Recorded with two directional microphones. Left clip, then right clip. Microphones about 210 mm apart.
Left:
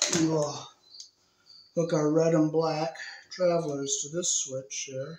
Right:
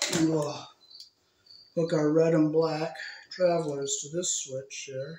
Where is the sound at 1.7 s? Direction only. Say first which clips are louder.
Even; 10° left (ahead or behind).